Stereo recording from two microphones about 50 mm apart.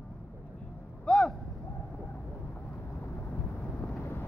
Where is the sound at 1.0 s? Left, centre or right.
Centre.